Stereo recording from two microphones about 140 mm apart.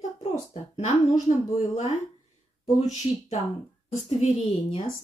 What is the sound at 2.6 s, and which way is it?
A woman's voice, 55° left (ahead or behind).